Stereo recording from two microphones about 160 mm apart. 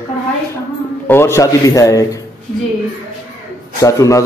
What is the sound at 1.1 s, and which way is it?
A man's voice, 15° left (ahead or behind).